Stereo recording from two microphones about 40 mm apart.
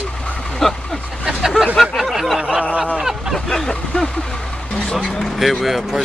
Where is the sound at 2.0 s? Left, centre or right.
Centre.